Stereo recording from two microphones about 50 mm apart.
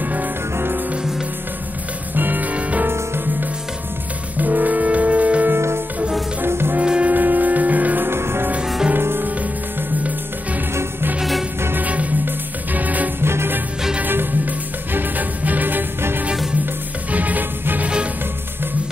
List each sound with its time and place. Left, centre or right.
0.0 s music: right
0.6 s music: right
2.1 s music: right
4.4 s music: right
5.5 s music: right
6.4 s music: right
6.8 s music: right
7.2 s music: right
8.1 s music: right
10.7 s music: right
11.8 s music: right
13.2 s music: right
14.0 s music: right
17.1 s music: right